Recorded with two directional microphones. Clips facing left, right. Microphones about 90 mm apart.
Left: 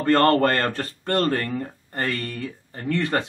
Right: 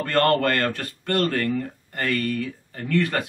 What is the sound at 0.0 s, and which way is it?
A man's voice, 30° left (ahead or behind).